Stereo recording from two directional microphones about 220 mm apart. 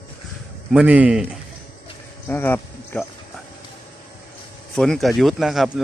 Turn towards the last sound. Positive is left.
turn(degrees=0)  # may be behind; listen again after turning